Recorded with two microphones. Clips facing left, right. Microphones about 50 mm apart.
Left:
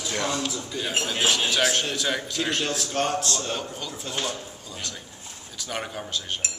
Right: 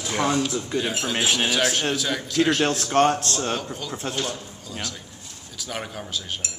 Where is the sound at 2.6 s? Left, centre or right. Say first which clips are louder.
Right 7 dB; right.